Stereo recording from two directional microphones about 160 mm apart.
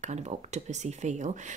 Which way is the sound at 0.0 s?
45° right (ahead or behind).